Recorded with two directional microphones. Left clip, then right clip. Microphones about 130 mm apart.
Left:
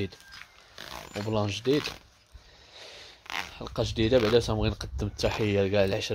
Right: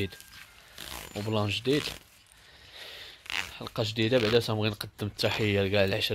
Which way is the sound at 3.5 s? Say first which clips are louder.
Left 1 dB; 10° left (ahead or behind).